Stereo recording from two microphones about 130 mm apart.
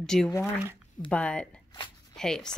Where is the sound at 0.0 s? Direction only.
5° left (ahead or behind).